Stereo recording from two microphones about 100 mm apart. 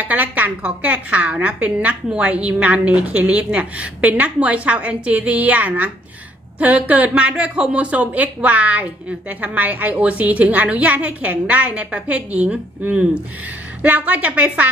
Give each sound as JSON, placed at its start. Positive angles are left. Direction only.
{"t": 0.0, "sound": "a woman's voice", "side_deg": -15}